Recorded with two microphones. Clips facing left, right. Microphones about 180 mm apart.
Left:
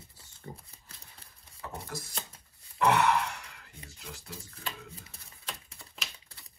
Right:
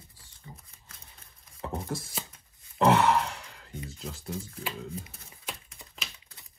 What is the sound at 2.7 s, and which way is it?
Sigh, 30° right (ahead or behind).